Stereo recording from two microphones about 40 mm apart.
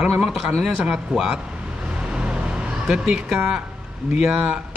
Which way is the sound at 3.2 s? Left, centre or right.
Centre.